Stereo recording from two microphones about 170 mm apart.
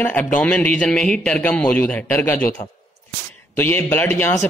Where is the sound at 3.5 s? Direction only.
10° left (ahead or behind).